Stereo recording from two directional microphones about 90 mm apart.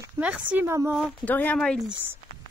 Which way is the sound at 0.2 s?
15° right (ahead or behind).